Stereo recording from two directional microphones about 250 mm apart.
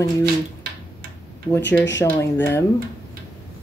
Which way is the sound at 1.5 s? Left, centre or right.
Left.